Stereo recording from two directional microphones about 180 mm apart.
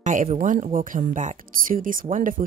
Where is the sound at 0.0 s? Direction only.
45° right (ahead or behind).